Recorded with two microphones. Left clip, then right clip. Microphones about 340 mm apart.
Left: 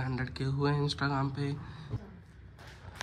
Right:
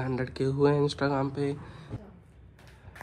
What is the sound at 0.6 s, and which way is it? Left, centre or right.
Speech, centre.